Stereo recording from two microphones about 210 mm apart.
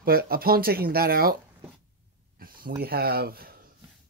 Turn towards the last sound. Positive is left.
turn(degrees=-45)  # may be behind; listen again after turning